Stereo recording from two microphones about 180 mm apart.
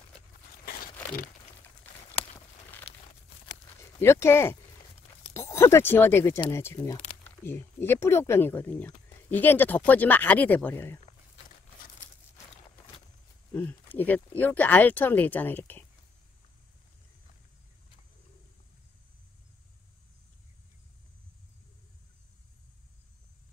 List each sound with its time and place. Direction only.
2.2 s a sound: 30° left (ahead or behind)
2.9 s crumpling: 35° left (ahead or behind)
4.0 s speech: 15° left (ahead or behind)
7.0 s crumpling: 30° left (ahead or behind)
7.4 s speech: 10° left (ahead or behind)
13.6 s speech: 10° left (ahead or behind)